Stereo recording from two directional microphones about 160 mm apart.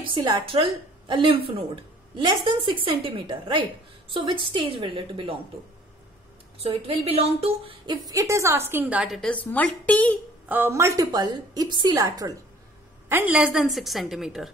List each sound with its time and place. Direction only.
0.0 s a woman's voice: 30° right (ahead or behind)
6.6 s a woman's voice: 40° right (ahead or behind); by 10.1 s 10° left (ahead or behind)
10.5 s a woman's voice: 15° right (ahead or behind)